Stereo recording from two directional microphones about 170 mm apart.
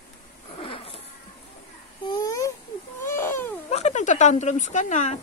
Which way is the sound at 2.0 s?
20° left (ahead or behind).